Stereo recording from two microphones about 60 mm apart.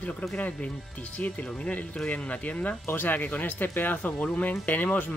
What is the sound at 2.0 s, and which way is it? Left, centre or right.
Speech, left.